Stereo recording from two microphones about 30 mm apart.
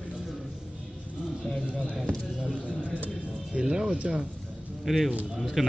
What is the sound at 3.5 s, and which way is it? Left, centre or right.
Music, right.